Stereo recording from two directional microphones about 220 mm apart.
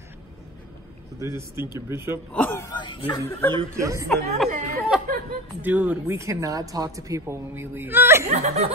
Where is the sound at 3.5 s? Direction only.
15° right (ahead or behind).